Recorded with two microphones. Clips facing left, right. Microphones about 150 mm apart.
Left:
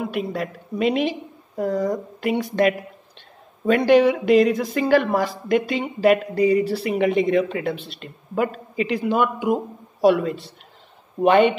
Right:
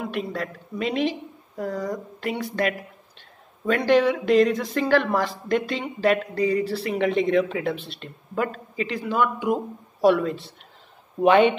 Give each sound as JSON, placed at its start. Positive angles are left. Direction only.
{"t": 0.0, "sound": "speech", "side_deg": 5}
{"t": 10.0, "sound": "a woman's voice", "side_deg": 5}